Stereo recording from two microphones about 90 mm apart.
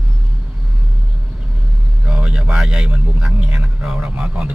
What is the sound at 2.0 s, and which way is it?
A man's voice, 10° right (ahead or behind).